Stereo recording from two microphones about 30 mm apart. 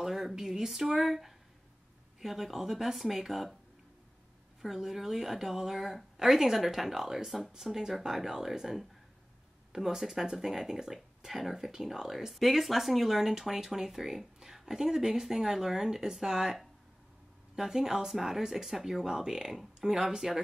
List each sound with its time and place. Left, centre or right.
0.0 s speech: centre
4.6 s speech: centre
9.8 s speech: centre
13.3 s speech: centre
17.6 s speech: centre